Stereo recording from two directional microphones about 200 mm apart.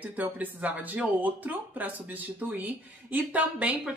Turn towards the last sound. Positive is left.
turn(degrees=-5)  # may be behind; listen again after turning